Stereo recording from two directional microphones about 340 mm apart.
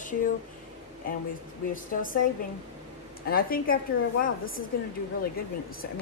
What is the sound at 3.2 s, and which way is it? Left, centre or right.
Speech, left.